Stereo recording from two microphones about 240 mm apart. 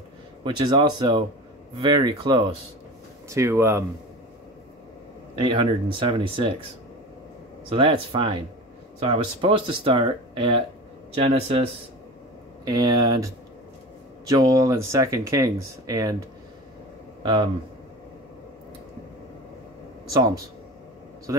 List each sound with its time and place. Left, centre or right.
0.4 s speech: centre
5.4 s speech: right
7.7 s speech: right
12.6 s speech: centre
14.3 s speech: centre
17.2 s speech: centre
20.1 s speech: centre